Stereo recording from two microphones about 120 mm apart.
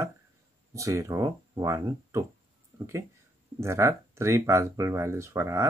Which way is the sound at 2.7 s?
20° right (ahead or behind).